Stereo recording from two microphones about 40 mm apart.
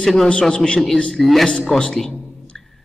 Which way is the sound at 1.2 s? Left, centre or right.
Centre.